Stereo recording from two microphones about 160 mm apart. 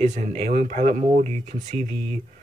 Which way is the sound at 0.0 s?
45° right (ahead or behind).